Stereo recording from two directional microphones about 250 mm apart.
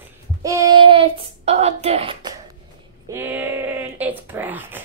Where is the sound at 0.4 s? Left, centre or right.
Centre.